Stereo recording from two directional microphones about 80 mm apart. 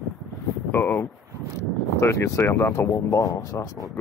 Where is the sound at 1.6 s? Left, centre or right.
Left.